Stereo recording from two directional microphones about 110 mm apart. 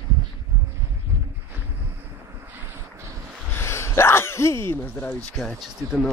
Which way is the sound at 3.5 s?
25° left (ahead or behind).